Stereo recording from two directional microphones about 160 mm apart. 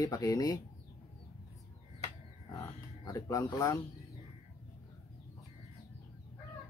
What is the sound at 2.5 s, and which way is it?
Speech, 20° left (ahead or behind).